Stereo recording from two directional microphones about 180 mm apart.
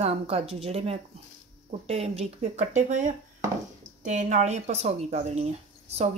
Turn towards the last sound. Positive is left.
turn(degrees=-35)  # may be behind; listen again after turning